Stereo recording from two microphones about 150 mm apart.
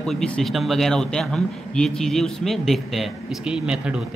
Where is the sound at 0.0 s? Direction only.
5° left (ahead or behind).